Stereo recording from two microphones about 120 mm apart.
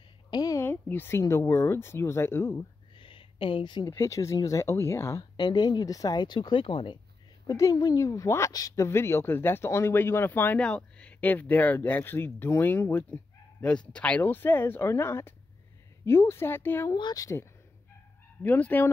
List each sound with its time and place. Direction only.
0.3 s a sound: 30° left (ahead or behind)
0.7 s a sound: 15° left (ahead or behind)
1.2 s speech: 25° left (ahead or behind)
3.0 s a sound: 45° left (ahead or behind)
3.9 s speech: 25° left (ahead or behind)
5.4 s speech: 35° left (ahead or behind)
7.4 s speech: 30° left (ahead or behind)
16.9 s speech: 35° left (ahead or behind)
18.4 s fowl: 15° left (ahead or behind)